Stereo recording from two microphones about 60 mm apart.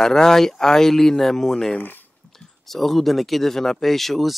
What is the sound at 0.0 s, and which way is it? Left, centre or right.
Speech, centre.